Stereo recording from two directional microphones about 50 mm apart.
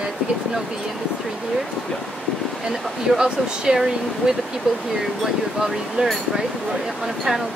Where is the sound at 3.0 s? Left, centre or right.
Centre.